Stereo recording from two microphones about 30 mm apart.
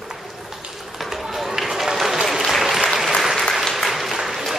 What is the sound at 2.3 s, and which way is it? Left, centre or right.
Applause, centre.